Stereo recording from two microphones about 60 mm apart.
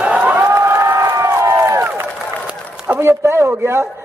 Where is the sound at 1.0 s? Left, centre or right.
Right.